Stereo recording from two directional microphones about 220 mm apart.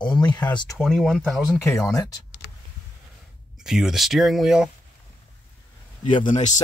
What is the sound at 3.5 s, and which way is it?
Speech, centre (ahead or behind).